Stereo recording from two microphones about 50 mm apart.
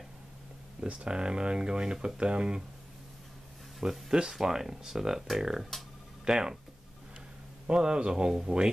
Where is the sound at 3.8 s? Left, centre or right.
Centre.